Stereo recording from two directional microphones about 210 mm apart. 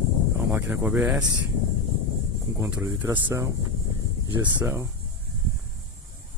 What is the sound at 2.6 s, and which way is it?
Speech, 10° right (ahead or behind).